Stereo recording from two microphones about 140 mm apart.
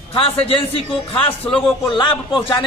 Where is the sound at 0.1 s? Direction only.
40° left (ahead or behind).